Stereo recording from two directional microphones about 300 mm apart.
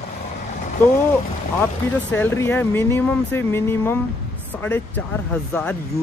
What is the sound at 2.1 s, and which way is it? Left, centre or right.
Speech, centre.